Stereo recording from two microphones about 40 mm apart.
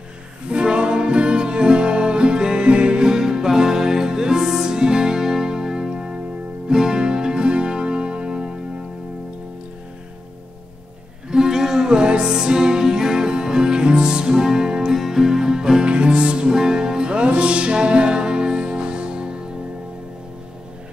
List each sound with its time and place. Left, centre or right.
0.5 s music: right
3.1 s music: centre
11.2 s music: centre